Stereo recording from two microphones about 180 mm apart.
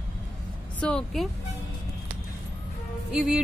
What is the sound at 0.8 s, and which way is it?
Speech, 5° left (ahead or behind).